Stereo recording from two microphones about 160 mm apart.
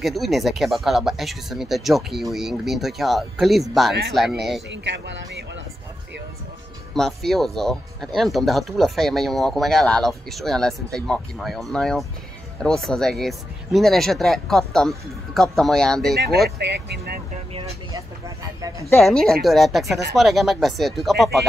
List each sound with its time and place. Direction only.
0.0 s speech: centre (ahead or behind)
4.6 s speech: 90° right
6.9 s speech: centre (ahead or behind)
16.2 s speech: 85° right
17.9 s speech: 20° right (ahead or behind)
18.9 s speech: centre (ahead or behind)